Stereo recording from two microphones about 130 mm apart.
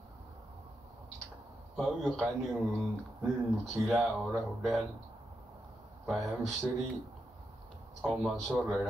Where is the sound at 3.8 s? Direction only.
15° right (ahead or behind).